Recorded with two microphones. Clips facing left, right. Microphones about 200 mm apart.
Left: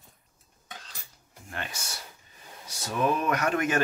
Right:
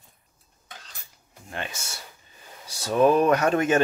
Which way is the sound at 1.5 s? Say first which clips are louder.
Right 4 dB; 20° right (ahead or behind).